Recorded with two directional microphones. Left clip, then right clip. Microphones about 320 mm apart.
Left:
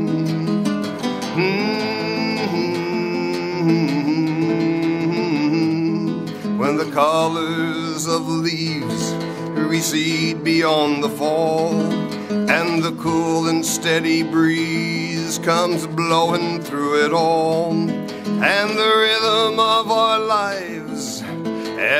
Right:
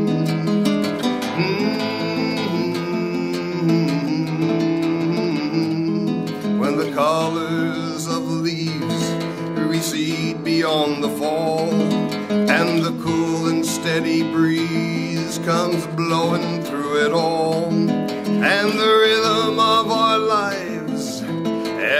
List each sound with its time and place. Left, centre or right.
1.4 s music: left
4.6 s music: left
9.6 s music: left